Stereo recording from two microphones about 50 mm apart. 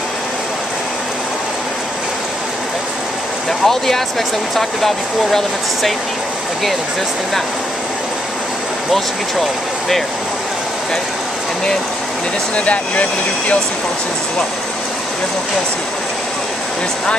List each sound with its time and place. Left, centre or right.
3.6 s speech: centre
8.9 s speech: centre
12.5 s speech: left